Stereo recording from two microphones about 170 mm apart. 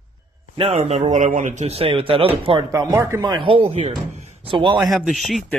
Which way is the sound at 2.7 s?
20° right (ahead or behind).